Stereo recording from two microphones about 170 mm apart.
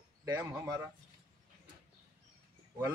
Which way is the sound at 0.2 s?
20° right (ahead or behind).